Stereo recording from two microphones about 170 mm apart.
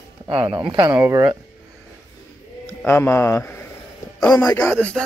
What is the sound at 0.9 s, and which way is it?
Speech, 15° right (ahead or behind).